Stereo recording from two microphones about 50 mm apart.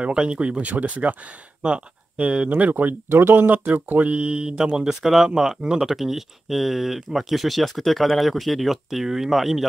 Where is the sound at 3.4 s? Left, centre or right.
Right.